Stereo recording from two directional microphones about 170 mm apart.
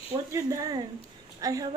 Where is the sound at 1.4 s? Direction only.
20° right (ahead or behind).